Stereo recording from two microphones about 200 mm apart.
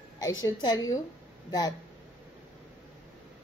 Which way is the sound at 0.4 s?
20° left (ahead or behind).